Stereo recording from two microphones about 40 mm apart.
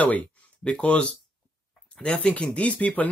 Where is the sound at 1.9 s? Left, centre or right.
Left.